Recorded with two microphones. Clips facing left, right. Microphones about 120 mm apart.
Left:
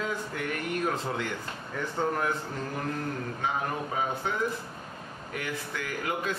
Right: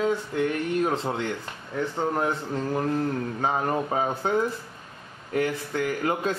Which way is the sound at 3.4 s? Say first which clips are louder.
Right 5 dB; 40° right (ahead or behind).